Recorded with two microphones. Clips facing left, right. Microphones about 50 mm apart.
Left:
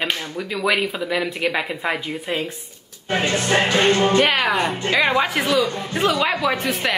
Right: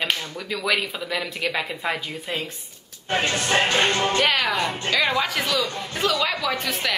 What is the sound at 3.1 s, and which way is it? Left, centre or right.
Music, left.